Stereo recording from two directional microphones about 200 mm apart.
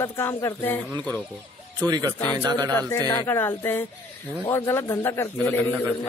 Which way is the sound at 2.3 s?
15° right (ahead or behind).